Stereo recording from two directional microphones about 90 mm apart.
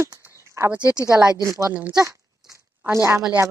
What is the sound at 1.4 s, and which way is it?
Speech, 35° right (ahead or behind).